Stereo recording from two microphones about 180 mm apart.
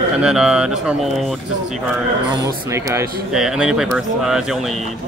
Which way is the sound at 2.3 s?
20° right (ahead or behind).